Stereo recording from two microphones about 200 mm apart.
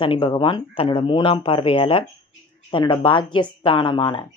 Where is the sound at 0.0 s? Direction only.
25° left (ahead or behind).